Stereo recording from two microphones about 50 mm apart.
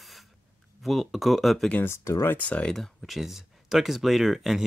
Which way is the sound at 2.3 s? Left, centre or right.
Left.